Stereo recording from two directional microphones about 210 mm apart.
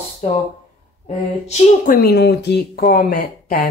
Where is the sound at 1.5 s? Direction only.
45° left (ahead or behind).